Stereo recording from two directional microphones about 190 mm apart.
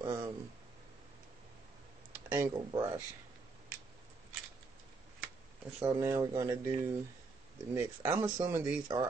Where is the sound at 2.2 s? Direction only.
10° right (ahead or behind).